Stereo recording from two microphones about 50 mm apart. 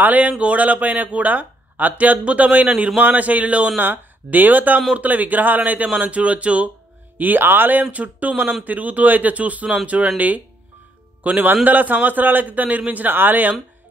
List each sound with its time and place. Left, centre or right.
0.0 s speech: right
3.8 s speech: right
7.2 s speech: right